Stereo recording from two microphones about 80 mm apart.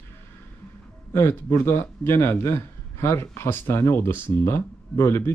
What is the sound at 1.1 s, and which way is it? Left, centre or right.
Speech, left.